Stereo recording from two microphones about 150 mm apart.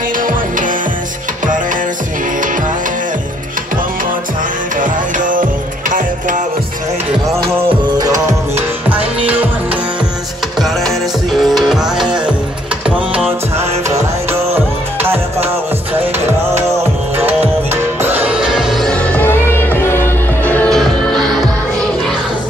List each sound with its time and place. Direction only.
0.2 s music: 60° right (ahead or behind)
4.7 s music: 60° right (ahead or behind)
7.8 s music: 25° right (ahead or behind)
10.6 s music: centre (ahead or behind)
17.2 s music: 15° right (ahead or behind); by 21.2 s 5° left (ahead or behind)